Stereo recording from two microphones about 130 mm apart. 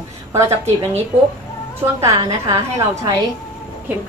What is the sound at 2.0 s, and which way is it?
A woman's voice, 25° right (ahead or behind).